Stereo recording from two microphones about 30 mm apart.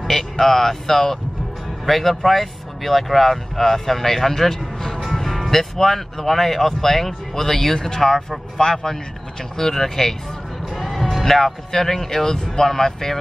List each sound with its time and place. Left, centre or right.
0.0 s speech: centre
10.6 s music: centre
11.7 s speech: centre